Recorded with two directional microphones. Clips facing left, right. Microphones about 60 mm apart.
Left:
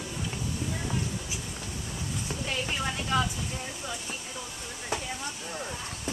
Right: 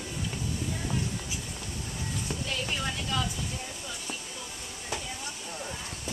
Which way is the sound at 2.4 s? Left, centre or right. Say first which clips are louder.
Left 2 dB; left.